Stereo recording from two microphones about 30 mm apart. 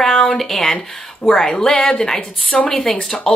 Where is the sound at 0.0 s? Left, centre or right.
Left.